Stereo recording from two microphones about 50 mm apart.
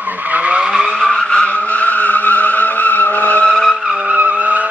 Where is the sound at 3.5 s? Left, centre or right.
Centre.